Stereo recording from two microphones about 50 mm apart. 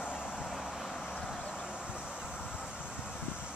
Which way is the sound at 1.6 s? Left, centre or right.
Centre.